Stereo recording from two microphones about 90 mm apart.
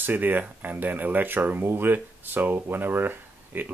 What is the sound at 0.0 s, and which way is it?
Speech, 20° right (ahead or behind).